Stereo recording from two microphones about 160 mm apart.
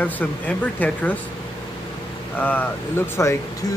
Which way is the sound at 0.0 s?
10° left (ahead or behind).